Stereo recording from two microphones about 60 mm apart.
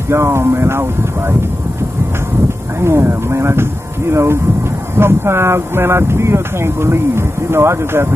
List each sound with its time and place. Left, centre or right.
0.1 s speech: right
2.8 s speech: right